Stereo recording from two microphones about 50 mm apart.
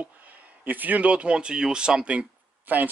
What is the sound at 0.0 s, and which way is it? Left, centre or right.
Speech, right.